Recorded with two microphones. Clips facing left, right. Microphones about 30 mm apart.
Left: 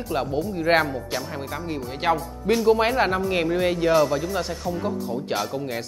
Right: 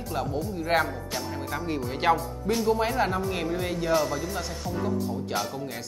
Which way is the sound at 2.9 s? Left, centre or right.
Left.